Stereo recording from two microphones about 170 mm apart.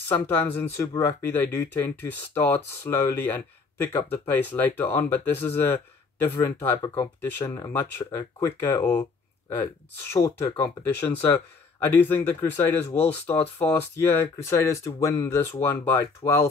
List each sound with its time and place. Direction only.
0.1 s speech: 10° left (ahead or behind)